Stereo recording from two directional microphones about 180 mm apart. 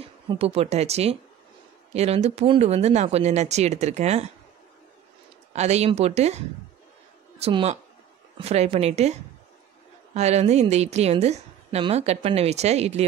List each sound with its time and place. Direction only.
0.0 s a woman's voice: 35° right (ahead or behind)
5.5 s a woman's voice: 40° right (ahead or behind)